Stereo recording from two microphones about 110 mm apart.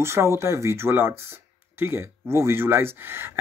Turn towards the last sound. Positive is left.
turn(degrees=-20)  # may be behind; listen again after turning